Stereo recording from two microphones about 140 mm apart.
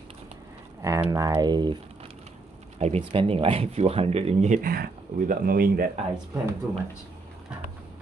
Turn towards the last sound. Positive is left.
turn(degrees=-5)  # may be behind; listen again after turning